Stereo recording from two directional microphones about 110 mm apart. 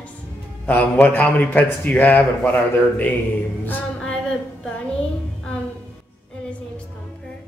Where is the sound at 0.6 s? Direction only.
15° left (ahead or behind).